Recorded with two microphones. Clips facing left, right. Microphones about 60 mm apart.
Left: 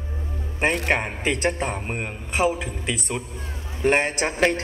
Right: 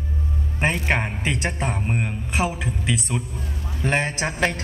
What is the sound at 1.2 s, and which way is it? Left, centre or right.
Speech, left.